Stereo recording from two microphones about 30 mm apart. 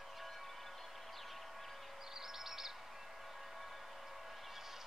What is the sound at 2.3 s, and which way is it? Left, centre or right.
Chirp, centre.